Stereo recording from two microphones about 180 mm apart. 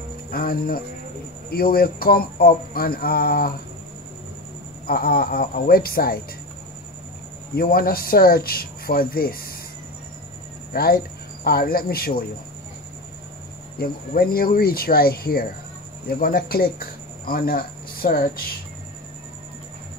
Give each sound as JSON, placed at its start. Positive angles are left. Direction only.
{"t": 0.3, "sound": "speech", "side_deg": 55}
{"t": 4.8, "sound": "speech", "side_deg": 55}
{"t": 7.5, "sound": "speech", "side_deg": 55}
{"t": 10.7, "sound": "speech", "side_deg": 55}
{"t": 13.7, "sound": "speech", "side_deg": 55}